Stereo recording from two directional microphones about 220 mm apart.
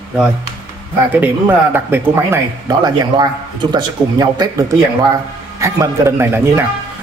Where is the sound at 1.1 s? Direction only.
10° right (ahead or behind).